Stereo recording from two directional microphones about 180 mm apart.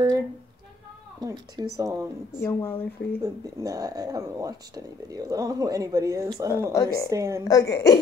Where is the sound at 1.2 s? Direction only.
20° right (ahead or behind).